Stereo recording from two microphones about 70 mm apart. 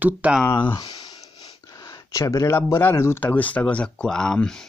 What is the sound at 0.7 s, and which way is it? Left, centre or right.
Speech, left.